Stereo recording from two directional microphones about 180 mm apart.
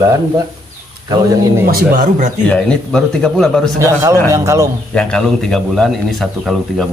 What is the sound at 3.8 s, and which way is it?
Speech, 15° right (ahead or behind).